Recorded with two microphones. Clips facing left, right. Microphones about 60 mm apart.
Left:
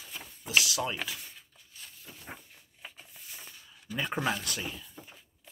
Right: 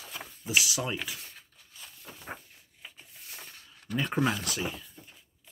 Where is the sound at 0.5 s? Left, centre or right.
Centre.